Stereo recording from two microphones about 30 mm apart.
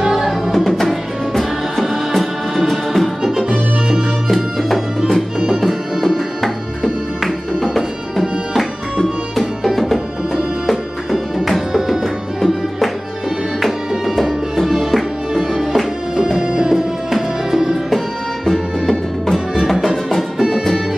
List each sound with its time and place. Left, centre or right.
0.7 s music: centre
4.6 s music: centre
11.3 s music: centre
12.4 s music: centre
16.3 s music: centre
17.8 s music: centre